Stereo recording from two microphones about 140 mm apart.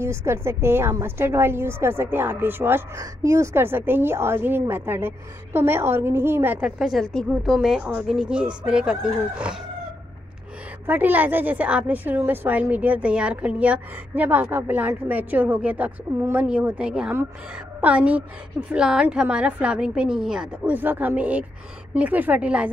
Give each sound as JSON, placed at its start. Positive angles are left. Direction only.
{"t": 0.0, "sound": "a woman's voice", "side_deg": -20}
{"t": 10.9, "sound": "a woman's voice", "side_deg": -10}